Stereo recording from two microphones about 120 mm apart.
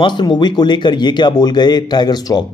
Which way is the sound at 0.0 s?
40° left (ahead or behind).